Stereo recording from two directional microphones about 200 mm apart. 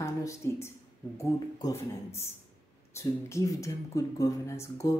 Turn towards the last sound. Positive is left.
turn(degrees=15)  # may be behind; listen again after turning